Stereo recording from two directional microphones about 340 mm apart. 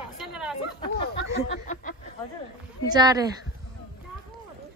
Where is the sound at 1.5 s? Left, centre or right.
Left.